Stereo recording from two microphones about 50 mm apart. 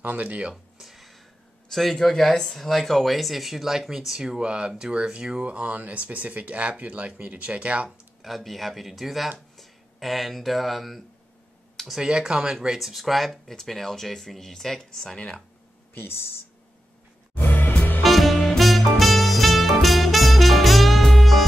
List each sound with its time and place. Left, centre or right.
0.0 s speech: right
0.5 s music: centre
1.7 s speech: centre; by 7.9 s right
8.2 s speech: centre
11.9 s speech: centre
12.6 s speech: centre
15.1 s speech: left
15.9 s speech: left
17.4 s music: left
18.0 s swing music: centre
18.6 s music: centre